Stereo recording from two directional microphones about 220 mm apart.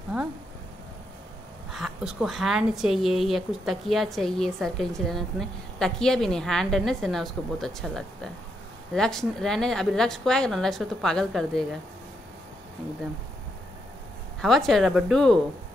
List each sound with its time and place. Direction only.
1.7 s a woman's voice: centre (ahead or behind)
14.4 s a woman's voice: centre (ahead or behind)